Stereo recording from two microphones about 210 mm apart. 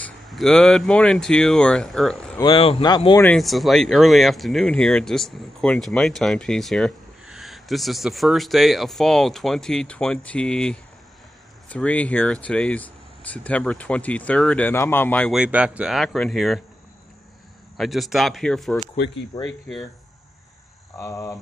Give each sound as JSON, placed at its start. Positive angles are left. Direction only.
{"t": 0.0, "sound": "speech", "side_deg": 0}
{"t": 2.4, "sound": "speech", "side_deg": 25}
{"t": 3.2, "sound": "speech", "side_deg": 5}
{"t": 17.7, "sound": "speech", "side_deg": 0}
{"t": 21.0, "sound": "cricket", "side_deg": 15}